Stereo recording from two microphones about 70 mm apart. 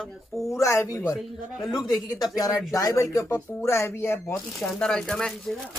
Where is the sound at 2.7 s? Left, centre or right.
Left.